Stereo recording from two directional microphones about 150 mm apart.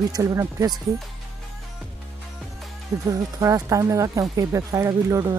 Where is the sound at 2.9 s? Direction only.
20° right (ahead or behind).